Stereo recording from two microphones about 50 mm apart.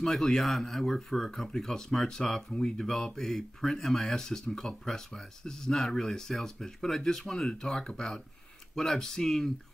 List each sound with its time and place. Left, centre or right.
0.0 s speech: centre